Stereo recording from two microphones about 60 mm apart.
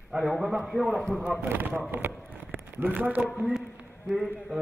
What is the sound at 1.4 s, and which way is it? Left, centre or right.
Speech, right.